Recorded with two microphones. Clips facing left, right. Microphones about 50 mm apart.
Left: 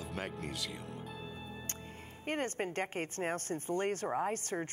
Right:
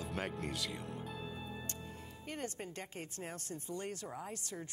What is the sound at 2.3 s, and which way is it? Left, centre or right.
Speech, left.